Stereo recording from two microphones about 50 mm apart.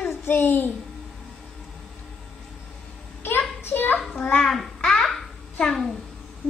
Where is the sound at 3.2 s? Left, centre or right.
Left.